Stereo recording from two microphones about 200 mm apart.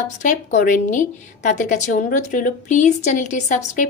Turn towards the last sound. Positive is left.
turn(degrees=40)  # may be behind; listen again after turning